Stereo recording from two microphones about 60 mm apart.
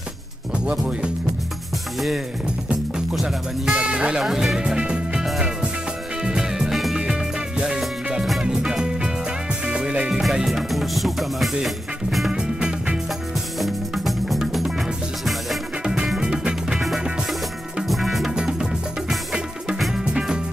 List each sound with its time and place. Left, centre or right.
0.7 s speech: centre
2.0 s speech: centre
3.7 s speech: centre
4.2 s speech: centre
4.6 s music: centre
6.2 s music: centre
10.3 s speech: centre
11.6 s music: centre
12.3 s music: centre
13.6 s music: centre
15.8 s music: centre
17.8 s music: centre